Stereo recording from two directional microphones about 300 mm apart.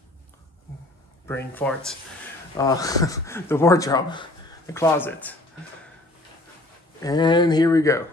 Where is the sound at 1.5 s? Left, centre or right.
Centre.